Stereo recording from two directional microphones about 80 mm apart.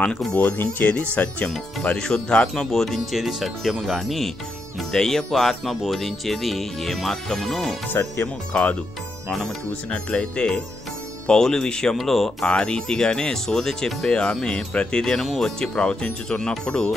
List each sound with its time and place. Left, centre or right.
0.4 s speech: left; by 7.7 s centre
8.2 s speech: centre
9.8 s speech: centre